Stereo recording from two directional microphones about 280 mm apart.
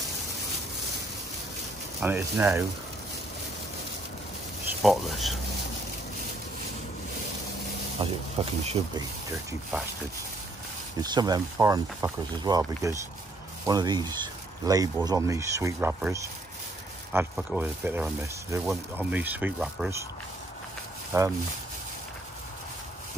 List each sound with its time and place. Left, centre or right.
2.0 s speech: centre
4.8 s speech: centre
8.0 s speech: centre
11.0 s speech: centre
21.1 s speech: centre